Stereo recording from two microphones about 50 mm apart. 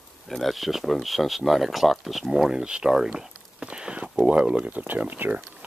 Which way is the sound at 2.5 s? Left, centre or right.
Centre.